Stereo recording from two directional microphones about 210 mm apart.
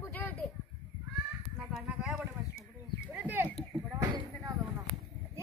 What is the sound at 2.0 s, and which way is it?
Speech, 5° right (ahead or behind).